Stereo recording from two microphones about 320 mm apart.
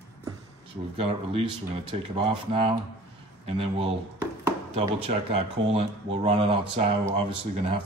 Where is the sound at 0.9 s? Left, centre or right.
Centre.